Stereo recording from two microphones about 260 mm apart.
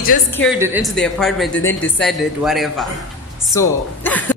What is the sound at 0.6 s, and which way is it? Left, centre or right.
Speech, centre.